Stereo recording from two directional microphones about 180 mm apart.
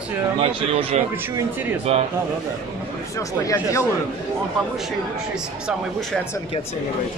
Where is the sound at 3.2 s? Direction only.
20° left (ahead or behind).